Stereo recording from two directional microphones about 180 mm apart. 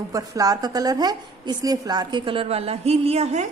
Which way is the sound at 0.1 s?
20° right (ahead or behind).